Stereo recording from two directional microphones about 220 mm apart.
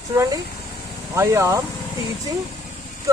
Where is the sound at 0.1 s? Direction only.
15° right (ahead or behind).